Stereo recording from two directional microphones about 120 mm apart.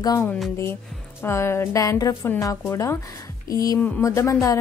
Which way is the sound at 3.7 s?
15° left (ahead or behind).